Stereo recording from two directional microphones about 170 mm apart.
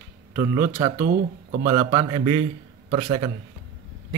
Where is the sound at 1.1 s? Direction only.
60° right (ahead or behind).